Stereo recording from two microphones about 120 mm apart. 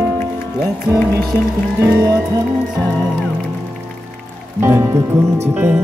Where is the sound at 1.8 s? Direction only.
30° right (ahead or behind).